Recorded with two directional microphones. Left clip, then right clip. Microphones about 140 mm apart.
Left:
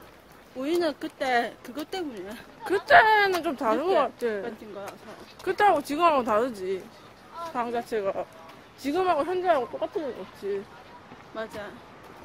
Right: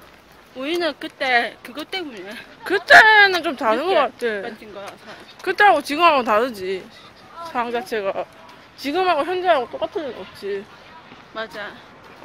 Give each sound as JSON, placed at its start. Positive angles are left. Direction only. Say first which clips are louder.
{"t": 0.6, "sound": "speech", "louder": "right 4 dB", "side_deg": 25}
{"t": 2.6, "sound": "speech", "louder": "right 7 dB", "side_deg": -5}
{"t": 11.3, "sound": "speech", "louder": "right 6 dB", "side_deg": 15}